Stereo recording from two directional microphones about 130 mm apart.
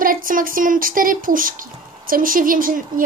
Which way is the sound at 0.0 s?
90° right.